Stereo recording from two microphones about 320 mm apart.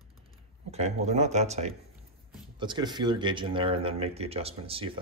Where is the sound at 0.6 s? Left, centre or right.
Centre.